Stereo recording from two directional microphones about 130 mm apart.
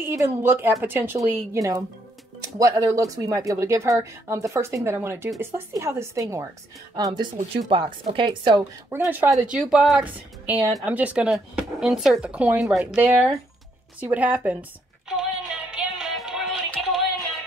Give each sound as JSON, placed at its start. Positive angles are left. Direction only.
{"t": 0.0, "sound": "speech", "side_deg": -20}
{"t": 2.9, "sound": "speech", "side_deg": -25}
{"t": 7.5, "sound": "a woman's voice", "side_deg": -45}
{"t": 8.9, "sound": "speech", "side_deg": -15}
{"t": 9.5, "sound": "speech", "side_deg": -5}
{"t": 15.0, "sound": "music", "side_deg": -5}